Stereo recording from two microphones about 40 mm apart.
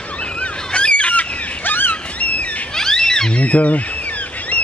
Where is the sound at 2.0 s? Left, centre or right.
Left.